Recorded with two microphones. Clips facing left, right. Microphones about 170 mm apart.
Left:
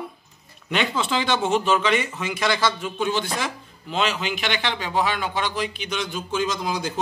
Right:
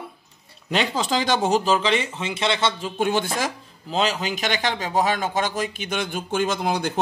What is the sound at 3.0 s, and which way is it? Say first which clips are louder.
Speech: right 3 dB; 50° right (ahead or behind).